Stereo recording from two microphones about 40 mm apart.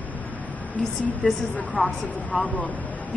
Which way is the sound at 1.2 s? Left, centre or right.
Left.